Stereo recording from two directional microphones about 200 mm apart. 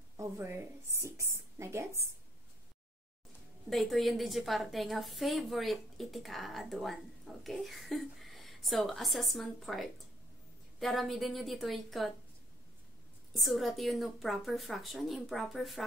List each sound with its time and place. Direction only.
0.2 s speech: 10° right (ahead or behind)
3.7 s a woman's voice: centre (ahead or behind)
13.3 s a woman's voice: centre (ahead or behind)